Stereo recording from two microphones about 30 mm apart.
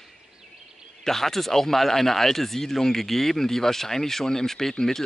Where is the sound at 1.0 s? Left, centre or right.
Centre.